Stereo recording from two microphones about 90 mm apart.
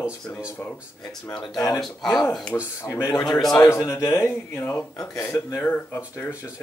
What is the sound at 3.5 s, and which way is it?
A man's voice, 35° left (ahead or behind).